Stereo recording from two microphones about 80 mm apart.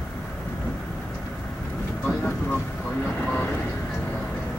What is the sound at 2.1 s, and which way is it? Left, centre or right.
Vehicle, left.